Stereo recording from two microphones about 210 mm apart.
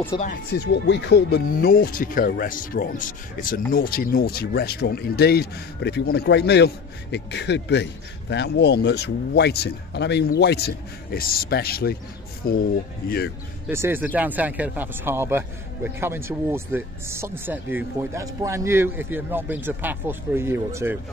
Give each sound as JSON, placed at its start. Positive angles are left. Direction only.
{"t": 0.2, "sound": "speech", "side_deg": 45}
{"t": 13.7, "sound": "speech", "side_deg": -10}